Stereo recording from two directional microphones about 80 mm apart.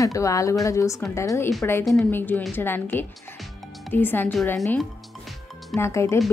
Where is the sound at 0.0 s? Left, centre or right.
Left.